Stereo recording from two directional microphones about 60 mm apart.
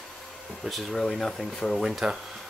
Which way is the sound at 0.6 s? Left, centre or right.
Centre.